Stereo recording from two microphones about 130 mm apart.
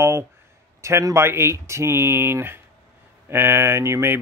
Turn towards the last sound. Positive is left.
turn(degrees=-20)  # may be behind; listen again after turning